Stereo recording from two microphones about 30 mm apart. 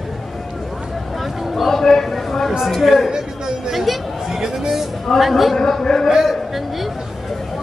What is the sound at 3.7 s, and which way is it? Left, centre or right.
Chatter, centre.